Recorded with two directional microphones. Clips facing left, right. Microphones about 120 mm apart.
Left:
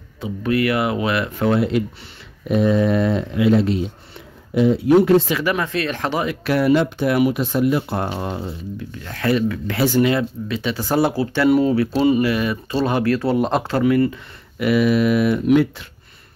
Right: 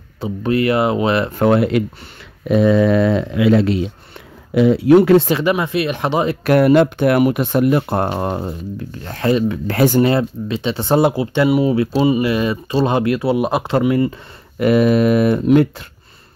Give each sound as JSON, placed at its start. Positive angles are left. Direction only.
{"t": 0.2, "sound": "speech", "side_deg": -30}
{"t": 1.4, "sound": "speech", "side_deg": -60}
{"t": 2.4, "sound": "speech", "side_deg": -90}
{"t": 5.4, "sound": "speech", "side_deg": -20}
{"t": 6.4, "sound": "speech", "side_deg": -55}
{"t": 9.7, "sound": "speech", "side_deg": -50}
{"t": 10.1, "sound": "speech", "side_deg": -25}
{"t": 13.7, "sound": "speech", "side_deg": -20}
{"t": 14.1, "sound": "speech", "side_deg": -45}